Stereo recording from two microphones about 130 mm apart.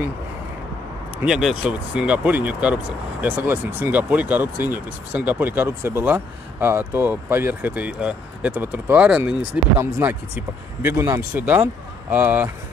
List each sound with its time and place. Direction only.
1.2 s speech: centre (ahead or behind)